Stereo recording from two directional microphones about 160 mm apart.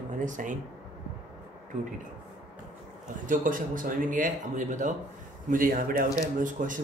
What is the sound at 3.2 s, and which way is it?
Speech, 55° right (ahead or behind).